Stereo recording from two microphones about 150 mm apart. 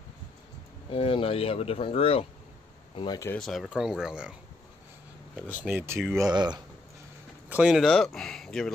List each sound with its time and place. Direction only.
0.8 s speech: 35° left (ahead or behind)
3.3 s speech: centre (ahead or behind); by 5.9 s 15° right (ahead or behind)
6.1 s speech: 25° right (ahead or behind)
7.4 s speech: 10° right (ahead or behind)